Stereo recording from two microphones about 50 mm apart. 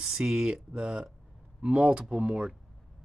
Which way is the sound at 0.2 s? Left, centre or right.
Centre.